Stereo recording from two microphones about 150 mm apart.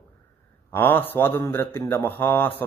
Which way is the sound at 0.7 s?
15° left (ahead or behind).